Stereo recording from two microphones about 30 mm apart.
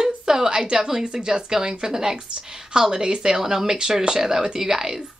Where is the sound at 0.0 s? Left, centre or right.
Right.